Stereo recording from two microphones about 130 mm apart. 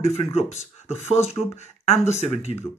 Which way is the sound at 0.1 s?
55° left (ahead or behind).